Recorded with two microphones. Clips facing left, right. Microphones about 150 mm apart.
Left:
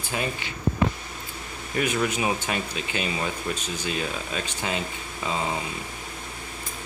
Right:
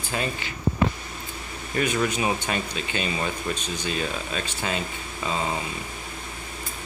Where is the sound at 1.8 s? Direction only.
10° left (ahead or behind).